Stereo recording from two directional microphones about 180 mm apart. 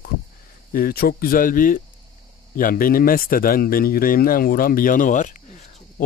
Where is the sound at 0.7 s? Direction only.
55° left (ahead or behind).